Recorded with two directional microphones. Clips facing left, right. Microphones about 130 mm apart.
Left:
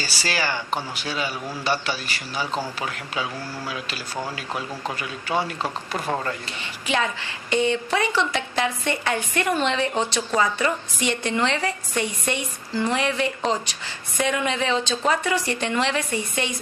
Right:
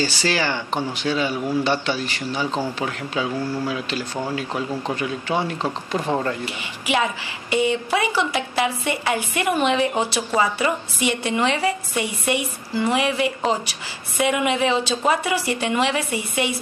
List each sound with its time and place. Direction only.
0.0 s speech: 10° left (ahead or behind)
1.2 s a woman's voice: 15° right (ahead or behind)
1.6 s speech: 10° left (ahead or behind)
2.4 s a woman's voice: 15° right (ahead or behind)
5.3 s a woman's voice: 15° right (ahead or behind)